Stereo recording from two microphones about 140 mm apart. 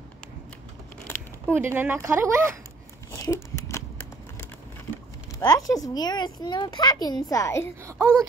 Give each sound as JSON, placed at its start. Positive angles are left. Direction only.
{"t": 1.5, "sound": "speech", "side_deg": -15}
{"t": 3.1, "sound": "a sound", "side_deg": 20}
{"t": 5.4, "sound": "speech", "side_deg": 25}
{"t": 7.8, "sound": "a child's voice", "side_deg": -20}